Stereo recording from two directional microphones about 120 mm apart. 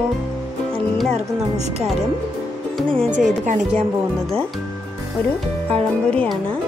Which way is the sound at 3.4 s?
90° right.